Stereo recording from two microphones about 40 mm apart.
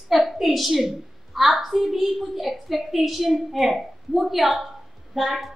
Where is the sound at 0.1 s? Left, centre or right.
Centre.